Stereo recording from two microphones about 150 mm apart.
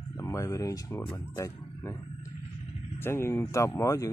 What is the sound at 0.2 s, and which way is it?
Speech, 20° left (ahead or behind).